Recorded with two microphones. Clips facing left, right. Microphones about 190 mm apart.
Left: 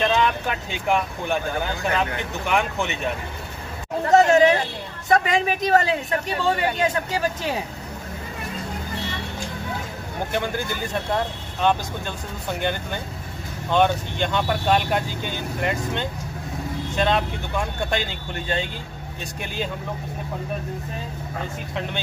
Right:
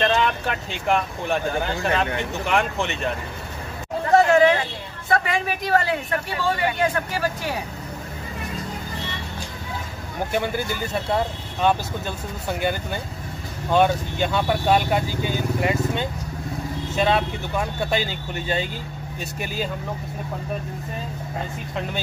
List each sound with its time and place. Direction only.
0.0 s speech: centre (ahead or behind)
4.1 s hubbub: 20° left (ahead or behind)
5.1 s speech: 20° left (ahead or behind)
10.3 s speech: 5° right (ahead or behind)